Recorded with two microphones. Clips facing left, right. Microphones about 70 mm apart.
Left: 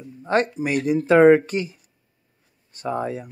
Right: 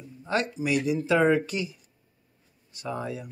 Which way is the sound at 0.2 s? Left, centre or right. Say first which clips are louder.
Left 6 dB; left.